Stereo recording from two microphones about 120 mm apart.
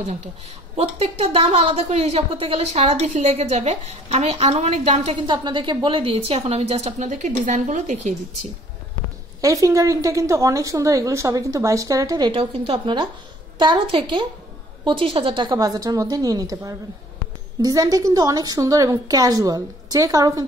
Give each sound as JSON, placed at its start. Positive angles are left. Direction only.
{"t": 0.7, "sound": "a woman's voice", "side_deg": -55}
{"t": 5.1, "sound": "a woman's voice", "side_deg": -40}
{"t": 9.4, "sound": "a woman's voice", "side_deg": -30}
{"t": 12.3, "sound": "a woman's voice", "side_deg": -50}